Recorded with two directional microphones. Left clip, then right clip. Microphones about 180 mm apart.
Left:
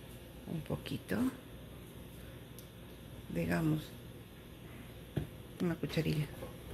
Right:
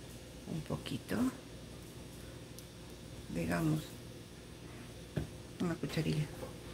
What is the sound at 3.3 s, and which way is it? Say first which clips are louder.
Speech: left 1 dB; 15° left (ahead or behind).